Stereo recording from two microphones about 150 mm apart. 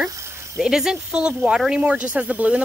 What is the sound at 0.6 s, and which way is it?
Speech, 5° right (ahead or behind).